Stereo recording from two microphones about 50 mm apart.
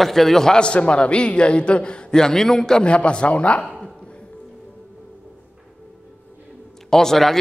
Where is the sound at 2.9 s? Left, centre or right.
Left.